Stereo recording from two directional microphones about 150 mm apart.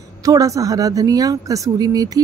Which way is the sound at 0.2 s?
25° right (ahead or behind).